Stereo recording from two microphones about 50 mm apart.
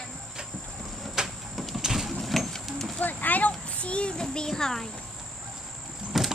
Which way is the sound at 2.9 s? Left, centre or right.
Left.